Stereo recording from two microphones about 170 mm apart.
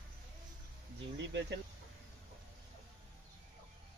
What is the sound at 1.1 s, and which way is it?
Speech, 90° right.